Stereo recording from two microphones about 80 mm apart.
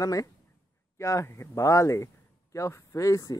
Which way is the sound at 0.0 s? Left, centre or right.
Left.